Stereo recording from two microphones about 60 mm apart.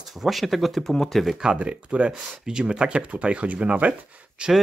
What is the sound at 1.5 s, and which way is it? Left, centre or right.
Speech, right.